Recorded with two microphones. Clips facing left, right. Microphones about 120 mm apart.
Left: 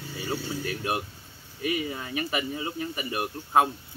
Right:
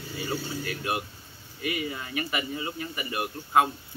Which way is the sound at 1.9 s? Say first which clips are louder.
Left 1 dB; 20° left (ahead or behind).